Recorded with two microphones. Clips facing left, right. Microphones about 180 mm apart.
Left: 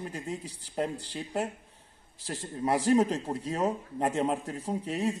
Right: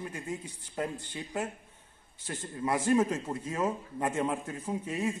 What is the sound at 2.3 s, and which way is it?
A man's voice, 35° left (ahead or behind).